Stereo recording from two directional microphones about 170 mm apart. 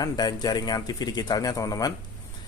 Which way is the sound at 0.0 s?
25° left (ahead or behind).